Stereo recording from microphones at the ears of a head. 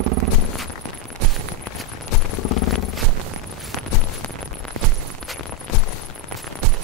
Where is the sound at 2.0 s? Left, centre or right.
Left.